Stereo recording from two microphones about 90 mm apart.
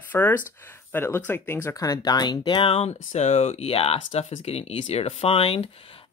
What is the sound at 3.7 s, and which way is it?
Speech, 90° left.